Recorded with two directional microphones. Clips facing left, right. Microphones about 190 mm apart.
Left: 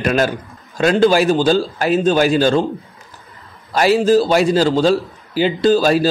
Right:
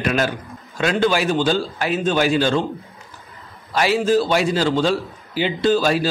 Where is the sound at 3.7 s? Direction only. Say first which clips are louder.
Left 5 dB; 40° left (ahead or behind).